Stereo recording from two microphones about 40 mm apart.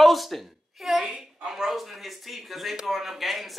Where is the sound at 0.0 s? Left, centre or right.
Centre.